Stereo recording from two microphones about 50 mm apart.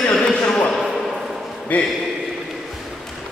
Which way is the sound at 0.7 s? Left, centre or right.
Centre.